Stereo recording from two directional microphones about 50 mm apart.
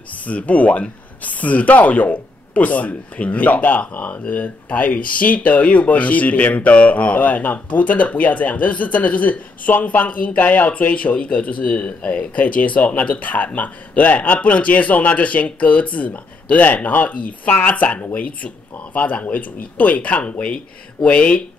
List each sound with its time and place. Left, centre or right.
0.1 s speech: left